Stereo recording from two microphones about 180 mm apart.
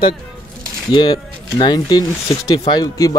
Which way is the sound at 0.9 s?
25° left (ahead or behind).